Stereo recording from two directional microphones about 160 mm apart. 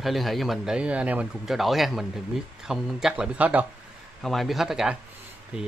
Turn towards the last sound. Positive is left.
turn(degrees=-5)  # may be behind; listen again after turning